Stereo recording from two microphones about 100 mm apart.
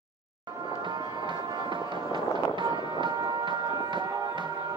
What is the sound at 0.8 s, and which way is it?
Music, 55° right (ahead or behind).